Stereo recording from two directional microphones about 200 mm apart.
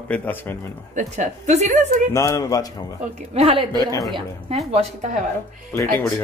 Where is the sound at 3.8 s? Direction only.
20° left (ahead or behind).